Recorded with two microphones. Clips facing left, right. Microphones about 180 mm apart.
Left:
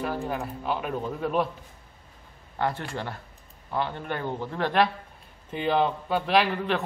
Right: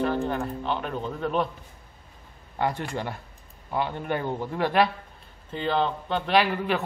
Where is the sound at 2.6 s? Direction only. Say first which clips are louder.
Right 1 dB; 15° right (ahead or behind).